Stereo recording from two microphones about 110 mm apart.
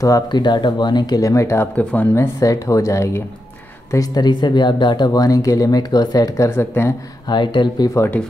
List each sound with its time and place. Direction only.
0.0 s speech: 35° left (ahead or behind)
3.9 s speech: 35° left (ahead or behind)
7.2 s speech: 45° left (ahead or behind)